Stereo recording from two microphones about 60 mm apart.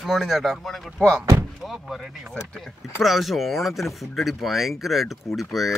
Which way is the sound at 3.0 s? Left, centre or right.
Centre.